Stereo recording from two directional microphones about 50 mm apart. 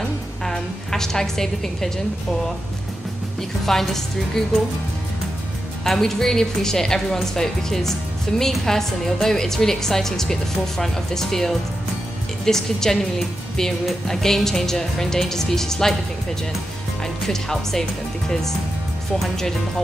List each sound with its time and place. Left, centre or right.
0.0 s music: centre
3.6 s a woman's voice: centre
5.9 s a woman's voice: centre
14.0 s a woman's voice: centre
17.0 s speech: centre
19.1 s speech: centre